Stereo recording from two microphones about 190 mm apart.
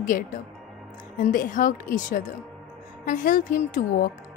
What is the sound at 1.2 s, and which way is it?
A woman's voice, 45° left (ahead or behind).